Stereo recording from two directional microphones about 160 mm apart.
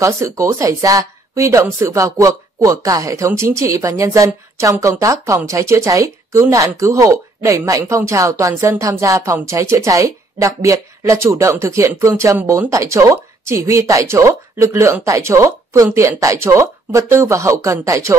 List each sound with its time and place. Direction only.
0.0 s speech: 20° right (ahead or behind)